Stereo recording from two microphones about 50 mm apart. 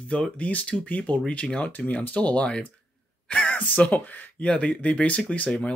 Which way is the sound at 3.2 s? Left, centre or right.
Left.